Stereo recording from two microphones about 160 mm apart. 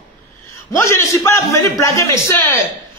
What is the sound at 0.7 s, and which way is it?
A man's voice, 15° left (ahead or behind).